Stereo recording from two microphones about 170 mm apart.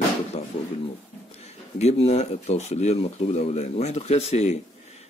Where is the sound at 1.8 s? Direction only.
40° left (ahead or behind).